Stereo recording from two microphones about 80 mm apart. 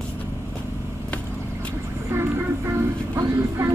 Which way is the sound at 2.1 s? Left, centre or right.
Right.